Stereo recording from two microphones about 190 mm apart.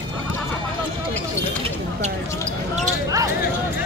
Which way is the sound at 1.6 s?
35° right (ahead or behind).